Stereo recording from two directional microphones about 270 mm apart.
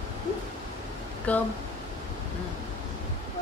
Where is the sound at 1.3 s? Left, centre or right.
Centre.